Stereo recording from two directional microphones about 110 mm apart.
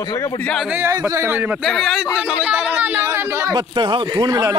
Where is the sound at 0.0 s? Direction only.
40° left (ahead or behind).